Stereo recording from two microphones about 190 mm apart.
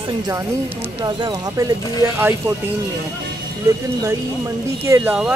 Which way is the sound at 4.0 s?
15° right (ahead or behind).